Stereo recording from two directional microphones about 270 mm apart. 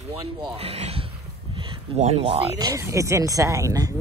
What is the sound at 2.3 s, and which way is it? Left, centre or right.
Speech, centre.